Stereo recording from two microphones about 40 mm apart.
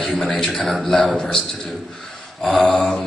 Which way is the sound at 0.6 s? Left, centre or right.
Centre.